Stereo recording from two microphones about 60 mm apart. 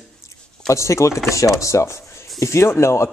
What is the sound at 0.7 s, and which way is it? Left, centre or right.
Speech, left.